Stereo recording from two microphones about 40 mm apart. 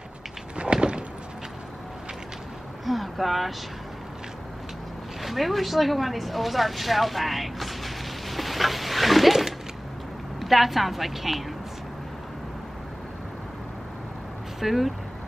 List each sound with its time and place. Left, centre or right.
0.6 s a sound: right
2.8 s speech: centre
5.2 s vehicle: centre
10.4 s a woman's voice: centre
14.6 s speech: centre